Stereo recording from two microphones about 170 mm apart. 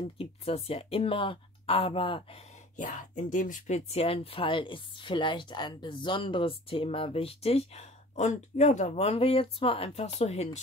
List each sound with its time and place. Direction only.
0.2 s speech: 35° left (ahead or behind)
2.7 s speech: 45° left (ahead or behind)